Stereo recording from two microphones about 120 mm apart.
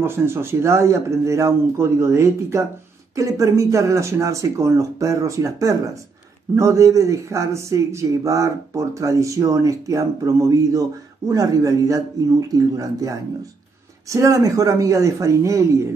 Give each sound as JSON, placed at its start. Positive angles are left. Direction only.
{"t": 0.0, "sound": "speech", "side_deg": -20}